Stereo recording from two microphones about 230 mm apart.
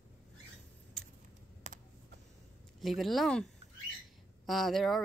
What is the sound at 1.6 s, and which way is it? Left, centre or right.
Computer keyboard, right.